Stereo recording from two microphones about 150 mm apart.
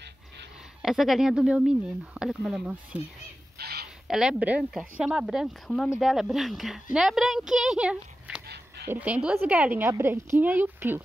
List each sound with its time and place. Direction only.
0.8 s speech: centre (ahead or behind)
3.5 s a sound: 90° right
4.1 s a woman's voice: 5° right (ahead or behind)